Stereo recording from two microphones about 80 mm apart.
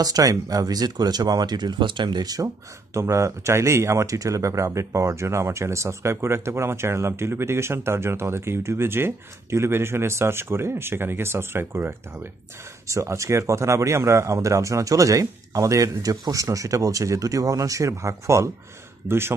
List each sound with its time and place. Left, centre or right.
0.0 s speech: right
2.2 s speech: right